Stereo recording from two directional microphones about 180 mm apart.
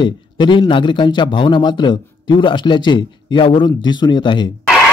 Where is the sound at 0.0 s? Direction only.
25° left (ahead or behind).